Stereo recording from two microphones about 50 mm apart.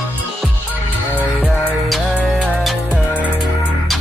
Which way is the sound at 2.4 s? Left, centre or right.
Centre.